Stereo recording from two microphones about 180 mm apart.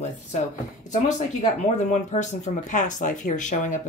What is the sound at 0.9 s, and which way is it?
Speech, 40° left (ahead or behind).